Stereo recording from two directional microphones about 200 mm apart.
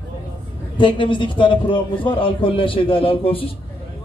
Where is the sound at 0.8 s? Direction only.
25° left (ahead or behind).